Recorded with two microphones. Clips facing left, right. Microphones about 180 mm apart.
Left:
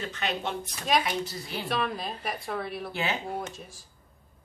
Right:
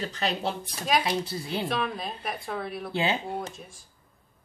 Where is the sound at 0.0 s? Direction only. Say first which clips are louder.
Right 3 dB; 35° right (ahead or behind).